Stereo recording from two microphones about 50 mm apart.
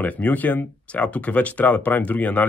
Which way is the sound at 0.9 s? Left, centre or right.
Left.